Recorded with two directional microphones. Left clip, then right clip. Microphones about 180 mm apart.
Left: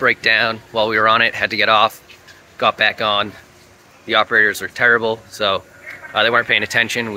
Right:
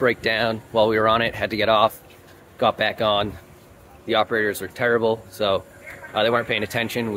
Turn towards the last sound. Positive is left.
turn(degrees=-5)  # may be behind; listen again after turning